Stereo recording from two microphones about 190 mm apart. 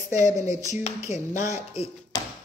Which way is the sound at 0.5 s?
20° right (ahead or behind).